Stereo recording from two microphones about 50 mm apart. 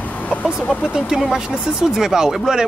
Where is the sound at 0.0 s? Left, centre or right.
Left.